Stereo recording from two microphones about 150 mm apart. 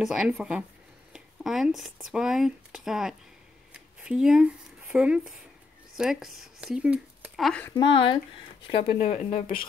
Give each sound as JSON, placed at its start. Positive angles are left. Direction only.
{"t": 0.0, "sound": "speech", "side_deg": -5}
{"t": 7.7, "sound": "speech", "side_deg": 30}
{"t": 8.9, "sound": "speech", "side_deg": 55}